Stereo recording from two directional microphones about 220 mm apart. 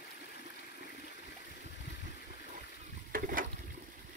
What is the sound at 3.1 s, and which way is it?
Boat, 40° right (ahead or behind).